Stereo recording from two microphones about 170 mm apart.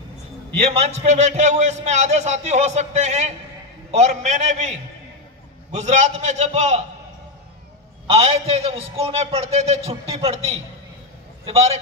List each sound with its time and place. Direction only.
0.6 s a man's voice: 40° right (ahead or behind)
8.1 s a man's voice: 35° right (ahead or behind)